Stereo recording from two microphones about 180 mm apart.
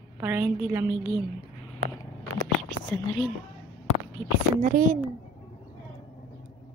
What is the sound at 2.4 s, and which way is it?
Whispering, 5° left (ahead or behind).